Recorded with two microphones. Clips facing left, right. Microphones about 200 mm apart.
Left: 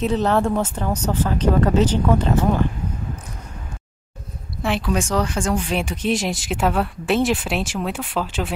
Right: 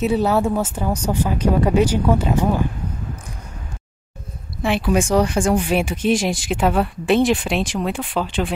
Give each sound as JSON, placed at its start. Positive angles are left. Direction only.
{"t": 0.0, "sound": "speech", "side_deg": -10}
{"t": 4.6, "sound": "speech", "side_deg": -5}